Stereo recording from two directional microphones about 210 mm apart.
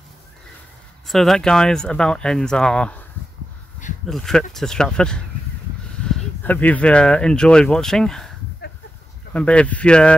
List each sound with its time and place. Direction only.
1.0 s speech: centre (ahead or behind)
4.1 s speech: centre (ahead or behind)
8.6 s a sound: 50° left (ahead or behind)
9.3 s speech: 5° left (ahead or behind)